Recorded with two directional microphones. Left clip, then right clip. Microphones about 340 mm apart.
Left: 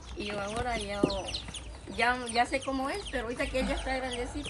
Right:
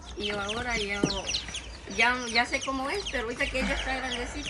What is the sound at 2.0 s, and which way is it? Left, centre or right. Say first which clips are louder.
Speech: right 3 dB; centre.